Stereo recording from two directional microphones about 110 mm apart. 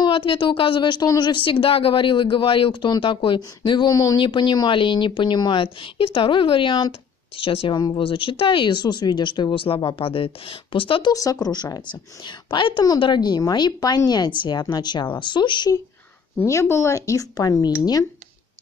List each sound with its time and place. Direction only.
0.0 s a woman's voice: 50° left (ahead or behind); by 4.2 s 30° left (ahead or behind)
4.2 s a woman's voice: 45° left (ahead or behind)
11.1 s a woman's voice: 35° left (ahead or behind)
16.3 s speech: 25° left (ahead or behind)